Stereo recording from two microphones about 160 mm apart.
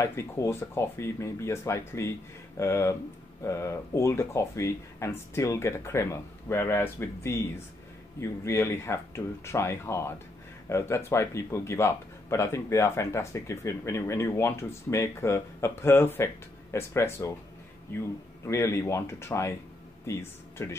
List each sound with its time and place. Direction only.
0.0 s speech: 15° left (ahead or behind)